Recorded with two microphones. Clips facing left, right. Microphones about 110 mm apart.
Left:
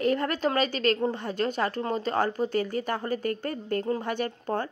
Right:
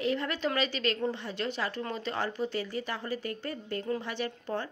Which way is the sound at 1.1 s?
45° left (ahead or behind).